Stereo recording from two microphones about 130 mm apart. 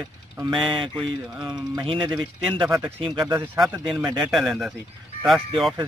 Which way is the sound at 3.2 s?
20° right (ahead or behind).